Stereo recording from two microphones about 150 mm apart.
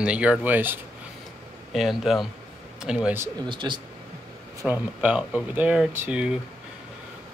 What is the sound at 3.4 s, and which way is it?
Speech, 30° right (ahead or behind).